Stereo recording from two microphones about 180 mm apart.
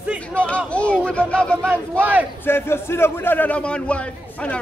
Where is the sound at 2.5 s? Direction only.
15° left (ahead or behind).